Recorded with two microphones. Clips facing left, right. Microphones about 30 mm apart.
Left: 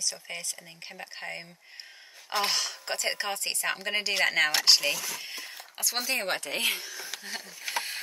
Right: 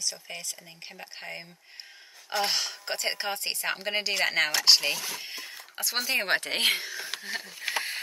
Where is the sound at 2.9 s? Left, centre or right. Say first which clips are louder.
Even; centre.